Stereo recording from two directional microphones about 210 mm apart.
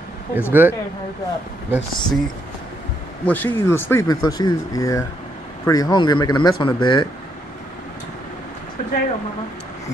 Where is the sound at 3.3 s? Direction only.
10° left (ahead or behind).